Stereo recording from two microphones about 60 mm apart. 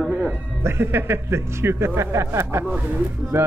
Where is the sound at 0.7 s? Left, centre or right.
Right.